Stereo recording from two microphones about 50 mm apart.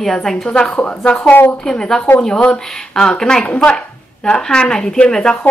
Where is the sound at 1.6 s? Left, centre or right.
Centre.